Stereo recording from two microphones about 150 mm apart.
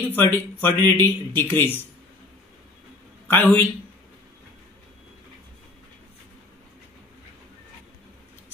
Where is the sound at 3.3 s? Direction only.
15° left (ahead or behind).